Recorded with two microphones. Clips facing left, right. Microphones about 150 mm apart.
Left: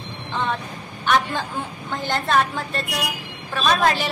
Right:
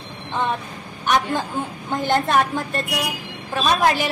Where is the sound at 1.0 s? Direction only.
15° right (ahead or behind).